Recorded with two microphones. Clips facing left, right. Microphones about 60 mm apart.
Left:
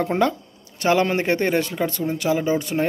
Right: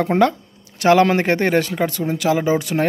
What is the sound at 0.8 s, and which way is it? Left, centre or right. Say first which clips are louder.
Speech: right 5 dB; right.